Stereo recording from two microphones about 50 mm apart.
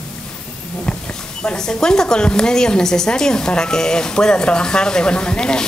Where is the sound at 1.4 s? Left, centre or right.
Centre.